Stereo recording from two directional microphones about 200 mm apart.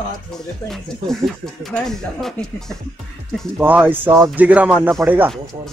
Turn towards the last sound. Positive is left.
turn(degrees=-10)  # may be behind; listen again after turning